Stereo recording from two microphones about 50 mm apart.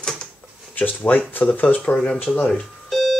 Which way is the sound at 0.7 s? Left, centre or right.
Left.